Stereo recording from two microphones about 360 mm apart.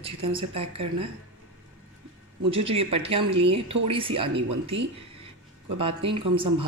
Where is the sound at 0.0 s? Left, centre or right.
Centre.